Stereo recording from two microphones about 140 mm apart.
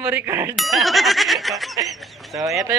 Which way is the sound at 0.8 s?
Centre (ahead or behind).